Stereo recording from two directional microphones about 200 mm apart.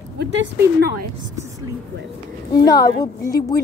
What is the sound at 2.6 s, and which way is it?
Speech, 20° left (ahead or behind).